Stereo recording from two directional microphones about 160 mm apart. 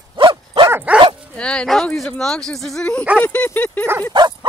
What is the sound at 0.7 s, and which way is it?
Dog, 10° right (ahead or behind).